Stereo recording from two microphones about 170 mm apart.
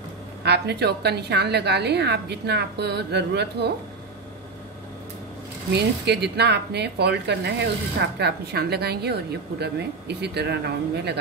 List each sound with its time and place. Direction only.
0.4 s speech: 75° right (ahead or behind)
5.8 s speech: 80° right